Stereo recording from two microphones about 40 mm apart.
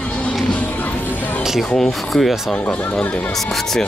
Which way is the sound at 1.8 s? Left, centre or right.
Centre.